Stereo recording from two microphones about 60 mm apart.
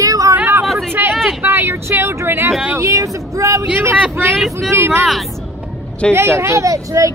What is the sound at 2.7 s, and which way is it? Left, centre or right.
Speech, right.